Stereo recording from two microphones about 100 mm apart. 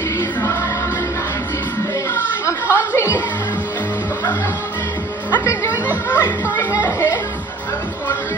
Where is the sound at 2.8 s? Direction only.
20° left (ahead or behind).